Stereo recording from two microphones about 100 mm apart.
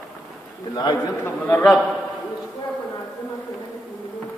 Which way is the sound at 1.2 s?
20° left (ahead or behind).